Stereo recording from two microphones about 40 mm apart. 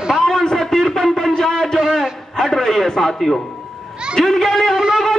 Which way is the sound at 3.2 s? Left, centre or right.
Centre.